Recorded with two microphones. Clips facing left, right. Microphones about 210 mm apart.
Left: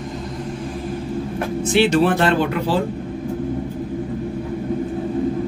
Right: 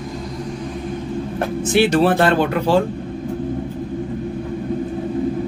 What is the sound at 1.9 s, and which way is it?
Speech, 40° right (ahead or behind).